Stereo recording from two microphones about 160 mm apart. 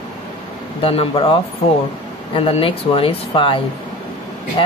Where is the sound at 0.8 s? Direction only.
35° left (ahead or behind).